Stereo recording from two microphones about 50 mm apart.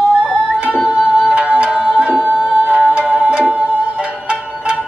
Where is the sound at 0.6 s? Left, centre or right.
Centre.